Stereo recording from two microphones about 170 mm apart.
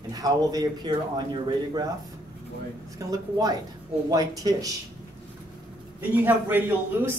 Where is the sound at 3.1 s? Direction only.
20° right (ahead or behind).